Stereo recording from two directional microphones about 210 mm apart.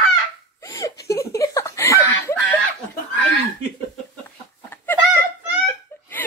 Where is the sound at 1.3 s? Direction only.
15° left (ahead or behind).